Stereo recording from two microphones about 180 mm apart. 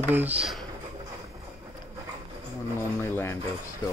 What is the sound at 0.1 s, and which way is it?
Speech, 10° right (ahead or behind).